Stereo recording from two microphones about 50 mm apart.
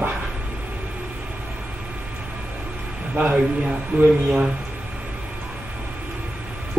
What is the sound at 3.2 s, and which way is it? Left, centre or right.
Speech, right.